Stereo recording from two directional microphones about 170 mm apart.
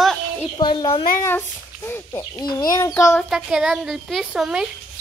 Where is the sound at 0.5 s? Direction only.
30° left (ahead or behind).